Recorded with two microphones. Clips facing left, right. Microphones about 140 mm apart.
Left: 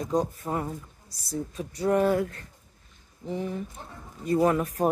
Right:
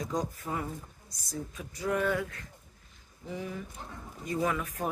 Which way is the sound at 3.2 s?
35° left (ahead or behind).